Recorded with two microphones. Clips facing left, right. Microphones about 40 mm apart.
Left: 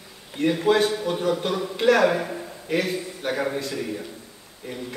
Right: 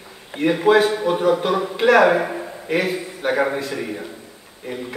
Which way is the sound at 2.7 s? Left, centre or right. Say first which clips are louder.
Right 3 dB; centre.